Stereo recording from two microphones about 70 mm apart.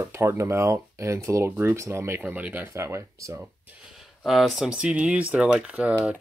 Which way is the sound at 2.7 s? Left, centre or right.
Right.